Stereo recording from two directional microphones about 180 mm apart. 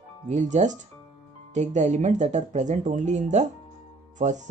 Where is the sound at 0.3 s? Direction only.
40° right (ahead or behind).